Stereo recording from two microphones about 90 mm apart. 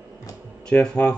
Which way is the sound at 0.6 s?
10° left (ahead or behind).